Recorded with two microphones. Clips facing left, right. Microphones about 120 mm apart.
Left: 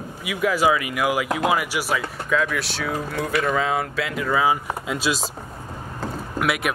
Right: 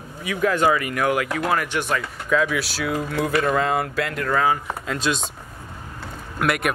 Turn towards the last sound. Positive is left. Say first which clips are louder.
# right 1 dB
turn(degrees=0)  # may be behind; listen again after turning